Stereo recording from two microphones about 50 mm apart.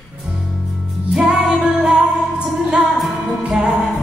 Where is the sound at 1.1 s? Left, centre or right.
Centre.